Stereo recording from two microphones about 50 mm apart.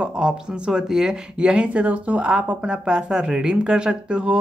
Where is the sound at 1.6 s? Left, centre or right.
Right.